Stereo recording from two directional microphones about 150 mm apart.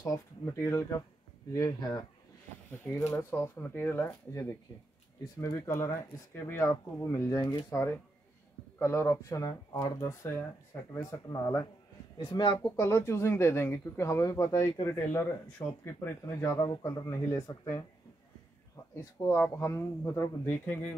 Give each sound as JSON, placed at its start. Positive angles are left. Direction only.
{"t": 0.0, "sound": "speech", "side_deg": 20}
{"t": 3.1, "sound": "speech", "side_deg": 15}
{"t": 12.6, "sound": "speech", "side_deg": 20}
{"t": 16.5, "sound": "speech", "side_deg": 30}
{"t": 19.2, "sound": "speech", "side_deg": 15}